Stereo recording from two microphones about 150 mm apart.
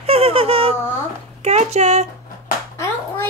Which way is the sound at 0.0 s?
40° right (ahead or behind).